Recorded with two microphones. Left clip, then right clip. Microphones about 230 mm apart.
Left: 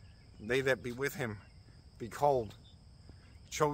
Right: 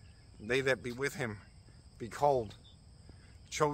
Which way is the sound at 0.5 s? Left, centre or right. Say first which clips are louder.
Even; centre.